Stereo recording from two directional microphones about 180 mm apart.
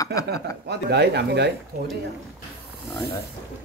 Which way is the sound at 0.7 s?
65° right (ahead or behind).